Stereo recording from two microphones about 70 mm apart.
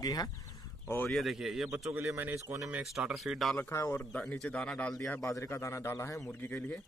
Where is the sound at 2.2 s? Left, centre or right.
Right.